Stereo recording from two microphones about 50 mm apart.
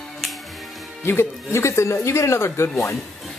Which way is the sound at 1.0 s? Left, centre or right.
Left.